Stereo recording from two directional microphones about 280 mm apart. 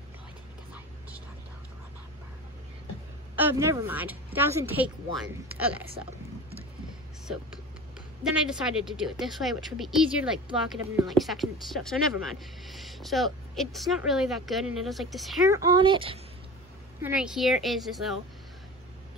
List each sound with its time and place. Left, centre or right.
3.3 s a woman's voice: centre
8.2 s speech: centre
15.4 s a woman's voice: centre
17.0 s speech: centre